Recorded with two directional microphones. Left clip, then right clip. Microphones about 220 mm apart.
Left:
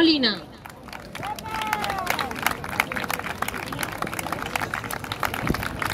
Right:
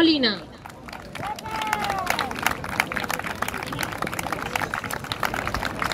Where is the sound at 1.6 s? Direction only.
25° left (ahead or behind).